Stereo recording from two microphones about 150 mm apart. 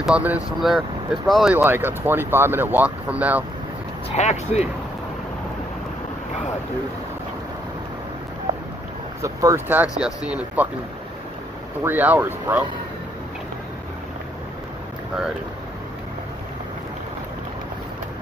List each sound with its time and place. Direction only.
0.0 s speech: 5° right (ahead or behind)
1.5 s speech: 15° right (ahead or behind)
4.1 s speech: 50° left (ahead or behind)
9.2 s speech: 20° right (ahead or behind)
11.8 s speech: 10° right (ahead or behind)